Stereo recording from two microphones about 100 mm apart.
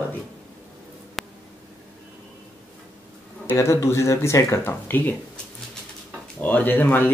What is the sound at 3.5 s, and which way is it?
Speech, 30° left (ahead or behind).